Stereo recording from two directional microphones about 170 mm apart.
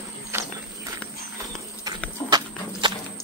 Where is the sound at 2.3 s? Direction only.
25° right (ahead or behind).